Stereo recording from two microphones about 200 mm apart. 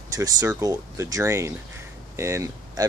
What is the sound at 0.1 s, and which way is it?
Speech, 15° right (ahead or behind).